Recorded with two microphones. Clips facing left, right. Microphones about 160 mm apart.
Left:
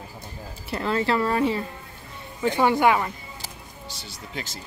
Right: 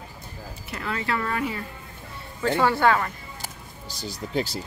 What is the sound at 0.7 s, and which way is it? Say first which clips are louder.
Speech: left 6 dB; 30° left (ahead or behind).